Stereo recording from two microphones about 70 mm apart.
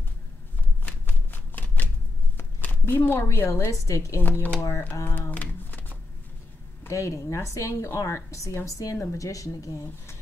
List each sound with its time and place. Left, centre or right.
0.8 s shuffling cards: left
2.3 s a sound: left
3.3 s a woman's voice: left
3.8 s speech: left
4.2 s speech: left
5.0 s typing: left
6.9 s speech: left